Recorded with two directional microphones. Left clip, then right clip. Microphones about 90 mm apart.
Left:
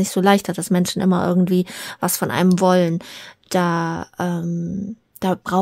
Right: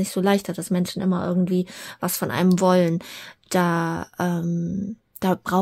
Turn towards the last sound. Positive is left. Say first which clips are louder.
# left 2 dB
turn(degrees=15)  # may be behind; listen again after turning